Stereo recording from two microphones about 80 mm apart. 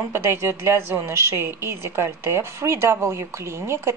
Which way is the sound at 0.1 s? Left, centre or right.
Right.